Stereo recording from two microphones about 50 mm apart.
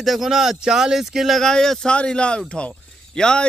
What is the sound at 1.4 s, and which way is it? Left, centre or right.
A man's voice, centre.